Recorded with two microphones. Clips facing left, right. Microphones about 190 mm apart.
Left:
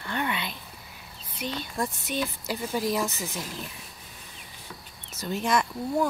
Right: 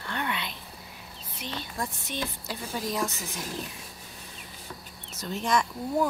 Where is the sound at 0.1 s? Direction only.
5° left (ahead or behind).